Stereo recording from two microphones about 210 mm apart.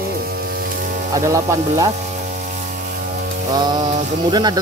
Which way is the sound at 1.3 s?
15° right (ahead or behind).